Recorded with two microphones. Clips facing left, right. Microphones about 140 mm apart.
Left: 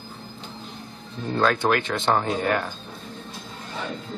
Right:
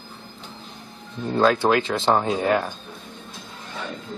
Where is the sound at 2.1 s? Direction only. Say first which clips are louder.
Right 3 dB; 15° right (ahead or behind).